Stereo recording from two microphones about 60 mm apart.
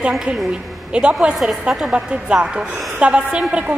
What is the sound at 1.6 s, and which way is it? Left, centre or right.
A woman's voice, centre.